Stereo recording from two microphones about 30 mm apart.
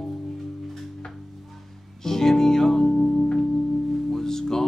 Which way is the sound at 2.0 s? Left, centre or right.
Centre.